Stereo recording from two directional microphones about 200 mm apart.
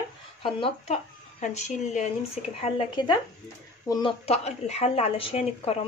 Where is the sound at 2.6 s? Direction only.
20° left (ahead or behind).